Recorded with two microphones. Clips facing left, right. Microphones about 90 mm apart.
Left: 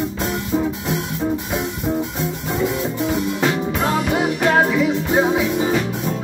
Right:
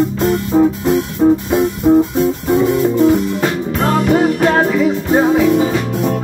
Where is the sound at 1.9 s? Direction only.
40° right (ahead or behind).